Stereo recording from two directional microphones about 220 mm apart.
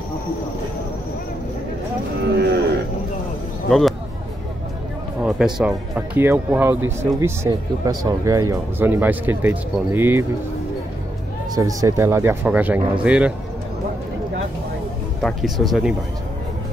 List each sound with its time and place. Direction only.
2.3 s livestock: 50° right (ahead or behind)
5.2 s speech: 5° right (ahead or behind)
11.5 s speech: 15° right (ahead or behind)
15.2 s speech: centre (ahead or behind)